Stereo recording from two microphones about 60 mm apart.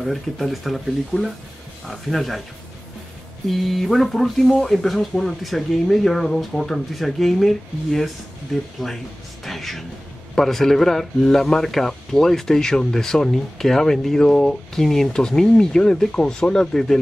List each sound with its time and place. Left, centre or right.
0.0 s speech: centre
1.9 s speech: centre
3.4 s speech: centre